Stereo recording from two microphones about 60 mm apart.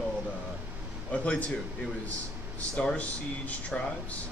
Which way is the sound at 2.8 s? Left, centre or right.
Centre.